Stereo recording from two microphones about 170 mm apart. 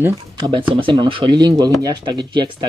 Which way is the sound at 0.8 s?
30° right (ahead or behind).